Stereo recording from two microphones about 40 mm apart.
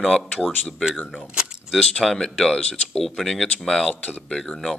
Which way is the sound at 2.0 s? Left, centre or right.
Centre.